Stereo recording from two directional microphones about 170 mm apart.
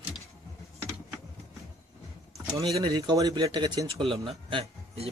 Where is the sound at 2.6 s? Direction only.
25° right (ahead or behind).